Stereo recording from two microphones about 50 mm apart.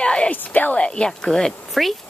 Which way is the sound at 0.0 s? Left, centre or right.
Left.